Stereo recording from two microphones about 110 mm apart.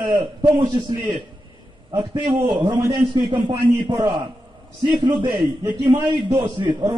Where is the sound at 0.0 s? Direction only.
45° right (ahead or behind).